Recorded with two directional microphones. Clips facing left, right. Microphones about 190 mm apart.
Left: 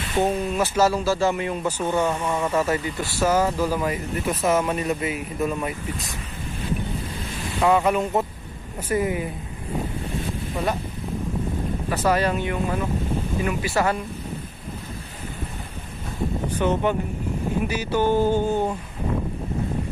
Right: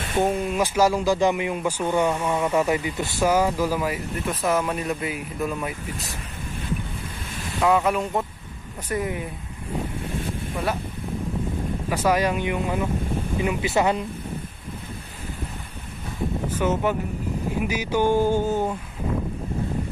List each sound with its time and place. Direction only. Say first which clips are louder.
0.2 s speech: even; 10° right (ahead or behind)
7.6 s speech: left 1 dB; centre (ahead or behind)
11.9 s speech: even; 10° right (ahead or behind)
16.5 s speech: left 1 dB; 5° right (ahead or behind)